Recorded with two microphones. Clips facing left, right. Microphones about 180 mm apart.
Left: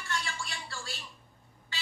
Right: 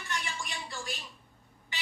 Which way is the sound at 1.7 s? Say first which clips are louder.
Right 1 dB; 20° right (ahead or behind).